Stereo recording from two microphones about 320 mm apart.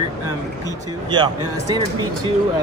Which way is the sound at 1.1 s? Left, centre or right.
Centre.